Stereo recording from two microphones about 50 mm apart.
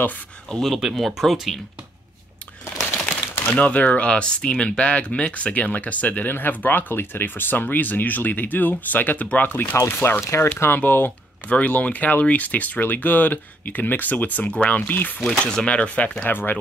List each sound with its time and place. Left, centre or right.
0.5 s speech: centre
3.5 s speech: left
9.8 s speech: left
10.2 s speech: left
10.8 s speech: left
14.8 s speech: left
15.1 s speech: centre
16.3 s speech: left